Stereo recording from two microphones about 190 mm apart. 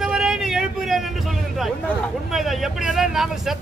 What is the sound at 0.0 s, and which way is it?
Vehicle, 5° right (ahead or behind).